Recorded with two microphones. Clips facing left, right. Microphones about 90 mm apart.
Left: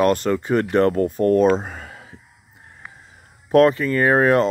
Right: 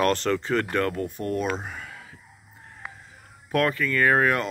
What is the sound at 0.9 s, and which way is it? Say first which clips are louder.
Speech: left 11 dB; 45° left (ahead or behind).